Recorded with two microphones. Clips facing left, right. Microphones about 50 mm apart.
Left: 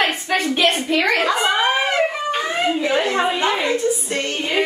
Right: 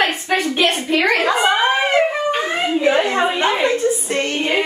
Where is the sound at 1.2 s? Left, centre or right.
Centre.